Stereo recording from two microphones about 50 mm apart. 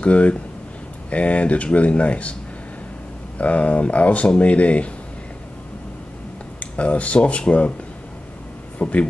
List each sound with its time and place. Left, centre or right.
0.0 s speech: left
3.3 s speech: left
6.8 s speech: left
8.7 s speech: left